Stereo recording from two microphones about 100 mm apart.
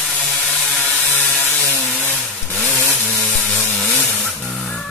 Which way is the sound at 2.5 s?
15° left (ahead or behind).